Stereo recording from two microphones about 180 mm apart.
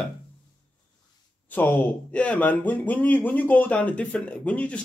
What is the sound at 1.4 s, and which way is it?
Speech, 10° left (ahead or behind).